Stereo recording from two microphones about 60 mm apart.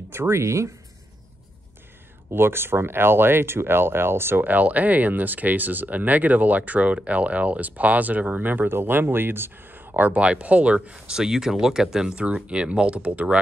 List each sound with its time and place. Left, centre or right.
0.1 s speech: right
2.3 s speech: right